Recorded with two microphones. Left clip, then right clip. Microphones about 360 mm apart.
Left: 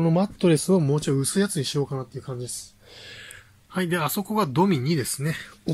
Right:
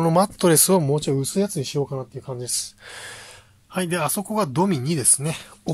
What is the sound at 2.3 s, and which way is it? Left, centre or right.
Speech, right.